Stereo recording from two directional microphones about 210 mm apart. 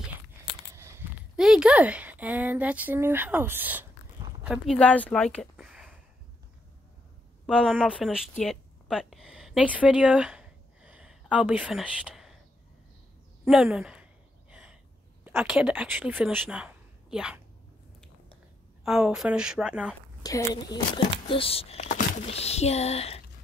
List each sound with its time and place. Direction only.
0.7 s speech: 10° right (ahead or behind)
4.5 s speech: 5° left (ahead or behind)
7.4 s speech: centre (ahead or behind)
12.1 s whispering: centre (ahead or behind)
13.5 s speech: 5° right (ahead or behind)
14.5 s a sound: 5° right (ahead or behind)
15.2 s speech: 5° right (ahead or behind)
18.9 s a woman's voice: centre (ahead or behind)
20.2 s speech: 20° left (ahead or behind)